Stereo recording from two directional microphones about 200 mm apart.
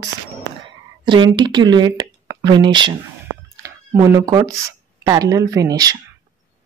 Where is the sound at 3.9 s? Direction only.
15° right (ahead or behind).